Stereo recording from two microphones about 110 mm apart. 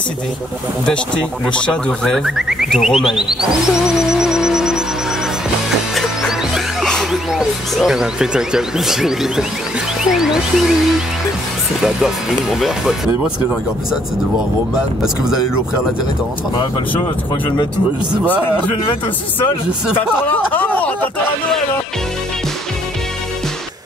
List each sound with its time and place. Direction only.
0.8 s speech: 10° left (ahead or behind)
5.9 s music: 5° right (ahead or behind)
6.9 s speech: centre (ahead or behind)
15.0 s speech: 5° right (ahead or behind)
16.7 s speech: 40° left (ahead or behind)
20.2 s a sound: 15° left (ahead or behind)